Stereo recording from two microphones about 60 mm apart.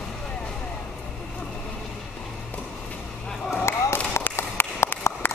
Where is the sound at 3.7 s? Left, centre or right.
Left.